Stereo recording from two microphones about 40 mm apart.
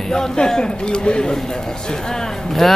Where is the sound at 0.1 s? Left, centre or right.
Centre.